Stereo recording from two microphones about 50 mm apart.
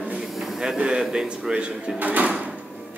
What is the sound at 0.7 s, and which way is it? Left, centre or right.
Speech, centre.